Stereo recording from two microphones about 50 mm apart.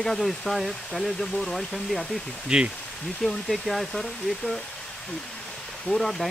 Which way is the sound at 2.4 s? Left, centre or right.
Centre.